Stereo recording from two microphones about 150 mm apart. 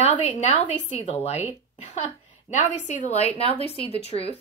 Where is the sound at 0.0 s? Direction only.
45° left (ahead or behind).